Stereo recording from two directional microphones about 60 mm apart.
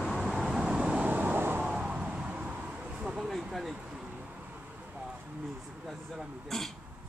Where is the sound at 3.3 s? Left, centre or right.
Centre.